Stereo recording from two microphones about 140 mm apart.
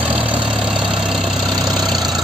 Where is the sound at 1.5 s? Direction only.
30° right (ahead or behind).